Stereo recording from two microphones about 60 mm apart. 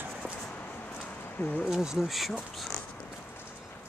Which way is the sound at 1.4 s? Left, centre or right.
Left.